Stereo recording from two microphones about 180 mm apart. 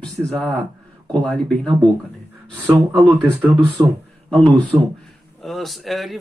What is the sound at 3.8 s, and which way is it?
Speech, 25° right (ahead or behind).